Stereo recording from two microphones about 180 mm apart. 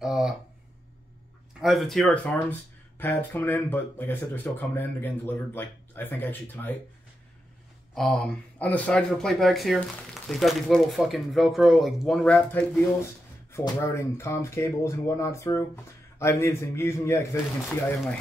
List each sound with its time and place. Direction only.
0.0 s a sound: centre (ahead or behind)
1.6 s speech: centre (ahead or behind)
7.9 s speech: 5° left (ahead or behind)